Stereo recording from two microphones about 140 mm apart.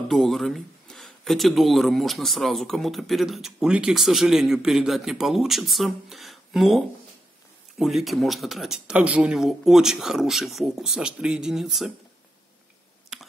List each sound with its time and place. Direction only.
0.1 s speech: centre (ahead or behind)
7.8 s speech: centre (ahead or behind)